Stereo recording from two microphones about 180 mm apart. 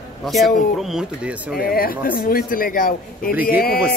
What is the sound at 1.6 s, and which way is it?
Speech, 55° left (ahead or behind).